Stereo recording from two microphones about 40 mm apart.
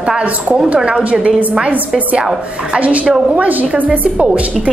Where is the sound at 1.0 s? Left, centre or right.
Right.